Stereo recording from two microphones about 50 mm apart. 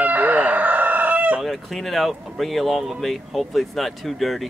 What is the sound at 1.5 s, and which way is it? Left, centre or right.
Speech, centre.